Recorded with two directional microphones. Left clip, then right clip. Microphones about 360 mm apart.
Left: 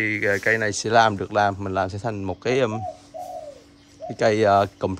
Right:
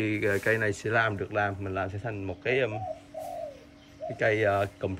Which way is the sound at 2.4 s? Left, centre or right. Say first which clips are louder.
Left 5 dB; centre.